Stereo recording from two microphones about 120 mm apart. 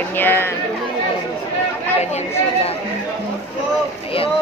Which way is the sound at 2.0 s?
65° left (ahead or behind).